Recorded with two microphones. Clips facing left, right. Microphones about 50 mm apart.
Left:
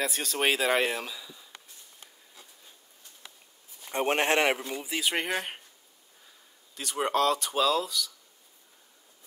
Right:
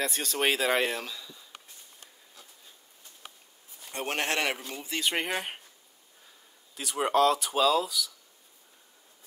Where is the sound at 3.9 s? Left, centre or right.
Left.